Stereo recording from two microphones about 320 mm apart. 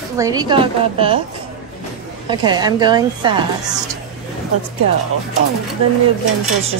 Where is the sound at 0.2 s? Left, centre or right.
Centre.